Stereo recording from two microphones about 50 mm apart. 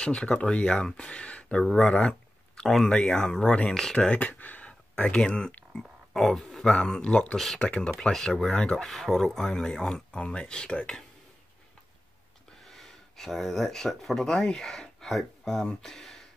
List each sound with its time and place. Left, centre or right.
0.0 s speech: centre
1.6 s speech: centre
1.9 s speech: centre
4.2 s a sound: left
5.0 s speech: centre
5.7 s a sound: centre
6.7 s speech: centre
7.3 s speech: centre
7.6 s speech: centre
8.0 s speech: centre
12.6 s speech: centre